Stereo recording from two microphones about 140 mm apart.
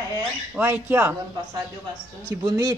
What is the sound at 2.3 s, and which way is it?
Speech, 25° right (ahead or behind).